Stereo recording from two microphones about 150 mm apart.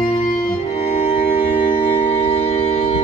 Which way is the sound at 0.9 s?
40° left (ahead or behind).